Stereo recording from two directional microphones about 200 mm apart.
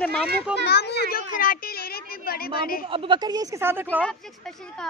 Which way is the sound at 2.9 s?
25° right (ahead or behind).